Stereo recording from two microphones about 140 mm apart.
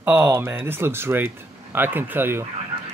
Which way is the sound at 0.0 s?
10° right (ahead or behind).